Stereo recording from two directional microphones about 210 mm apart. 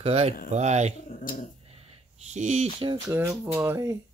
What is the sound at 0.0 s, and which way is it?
Speech, 30° right (ahead or behind).